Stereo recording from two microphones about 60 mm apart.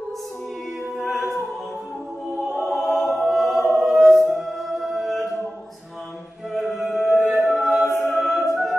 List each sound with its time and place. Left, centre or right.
0.9 s a capella: centre
2.4 s opera: centre
2.8 s choir: centre
3.2 s a capella: centre
3.7 s choir: centre
4.4 s music: centre
6.5 s music: centre